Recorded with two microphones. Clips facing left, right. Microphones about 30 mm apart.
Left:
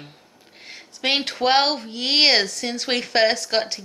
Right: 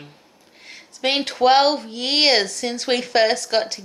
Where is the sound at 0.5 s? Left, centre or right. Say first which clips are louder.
Left 1 dB; centre.